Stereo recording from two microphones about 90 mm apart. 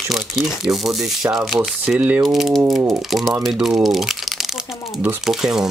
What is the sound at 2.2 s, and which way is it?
Speech, centre (ahead or behind).